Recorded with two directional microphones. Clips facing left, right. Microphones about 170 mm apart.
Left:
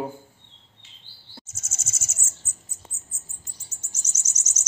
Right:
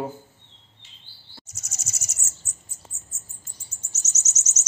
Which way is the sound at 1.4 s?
25° left (ahead or behind).